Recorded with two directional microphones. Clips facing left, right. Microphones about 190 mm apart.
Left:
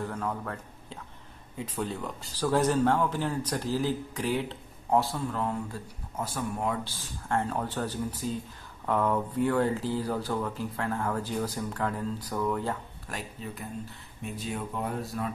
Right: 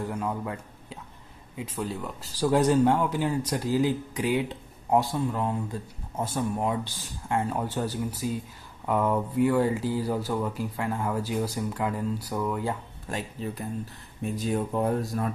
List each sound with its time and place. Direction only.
0.0 s speech: 15° right (ahead or behind)
14.3 s speech: 40° right (ahead or behind)